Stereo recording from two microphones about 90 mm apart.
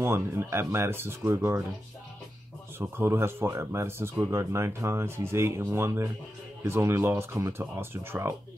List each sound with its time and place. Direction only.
0.0 s speech: 30° right (ahead or behind)
2.8 s speech: 25° right (ahead or behind)